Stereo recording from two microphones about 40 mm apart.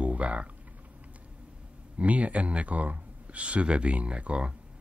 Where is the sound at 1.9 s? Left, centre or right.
Right.